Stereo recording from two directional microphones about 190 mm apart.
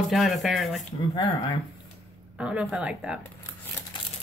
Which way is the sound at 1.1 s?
20° left (ahead or behind).